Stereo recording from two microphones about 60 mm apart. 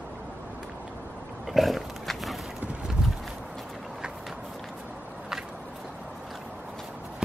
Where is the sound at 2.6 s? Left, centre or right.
Centre.